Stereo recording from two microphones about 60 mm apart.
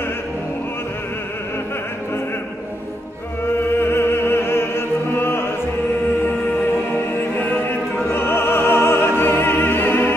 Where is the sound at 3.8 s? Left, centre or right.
Left.